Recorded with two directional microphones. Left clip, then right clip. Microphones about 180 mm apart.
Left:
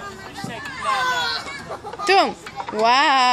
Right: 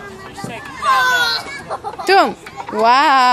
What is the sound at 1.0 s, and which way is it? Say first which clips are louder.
Speech: right 7 dB; 45° right (ahead or behind).